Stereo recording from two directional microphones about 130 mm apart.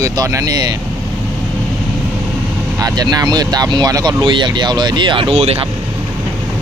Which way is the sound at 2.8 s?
30° right (ahead or behind).